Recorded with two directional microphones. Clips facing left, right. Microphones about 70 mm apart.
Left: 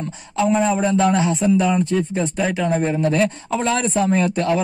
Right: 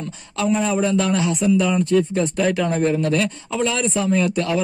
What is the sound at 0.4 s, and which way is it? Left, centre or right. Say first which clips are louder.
A man's voice: left 2 dB; left.